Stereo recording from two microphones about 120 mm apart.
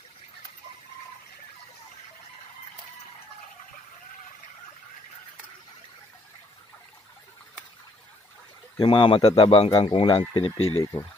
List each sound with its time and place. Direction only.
8.7 s a man's voice: 40° left (ahead or behind)
9.7 s speech: 35° left (ahead or behind)
9.9 s a man's voice: 50° left (ahead or behind)